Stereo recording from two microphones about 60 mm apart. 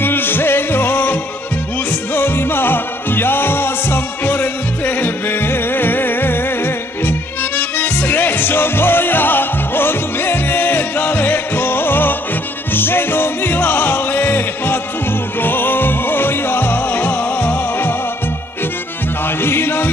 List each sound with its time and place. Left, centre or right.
0.0 s music: left
19.2 s music: left